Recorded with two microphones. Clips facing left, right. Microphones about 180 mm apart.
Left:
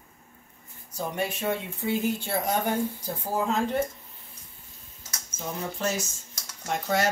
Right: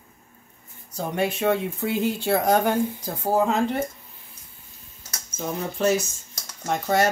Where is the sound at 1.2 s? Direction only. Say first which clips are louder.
Right 7 dB; 75° right (ahead or behind).